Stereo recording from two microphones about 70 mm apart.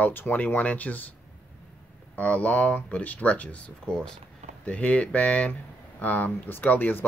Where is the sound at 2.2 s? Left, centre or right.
Centre.